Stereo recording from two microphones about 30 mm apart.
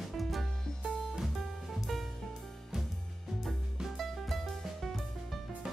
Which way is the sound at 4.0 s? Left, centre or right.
Centre.